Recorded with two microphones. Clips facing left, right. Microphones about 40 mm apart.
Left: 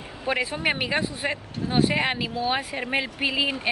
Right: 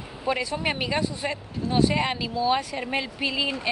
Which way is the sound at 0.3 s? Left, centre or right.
Left.